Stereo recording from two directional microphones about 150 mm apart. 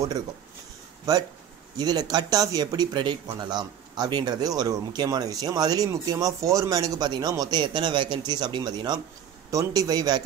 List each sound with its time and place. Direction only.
1.8 s speech: 25° right (ahead or behind)